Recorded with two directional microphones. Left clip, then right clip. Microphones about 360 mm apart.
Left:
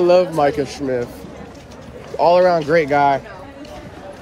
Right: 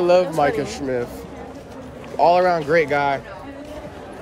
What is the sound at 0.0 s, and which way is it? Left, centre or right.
Speech, centre.